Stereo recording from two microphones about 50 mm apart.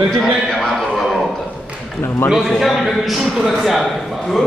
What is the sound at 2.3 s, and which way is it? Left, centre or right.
Speech, centre.